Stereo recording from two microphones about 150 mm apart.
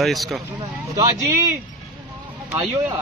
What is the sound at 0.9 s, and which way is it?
Speech, 20° right (ahead or behind).